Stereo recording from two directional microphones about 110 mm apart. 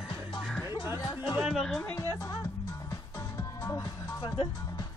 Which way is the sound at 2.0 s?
30° left (ahead or behind).